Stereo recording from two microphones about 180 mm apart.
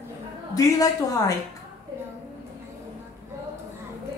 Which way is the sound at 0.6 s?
20° left (ahead or behind).